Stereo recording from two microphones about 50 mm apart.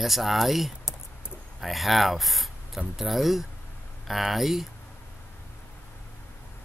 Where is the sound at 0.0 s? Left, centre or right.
Centre.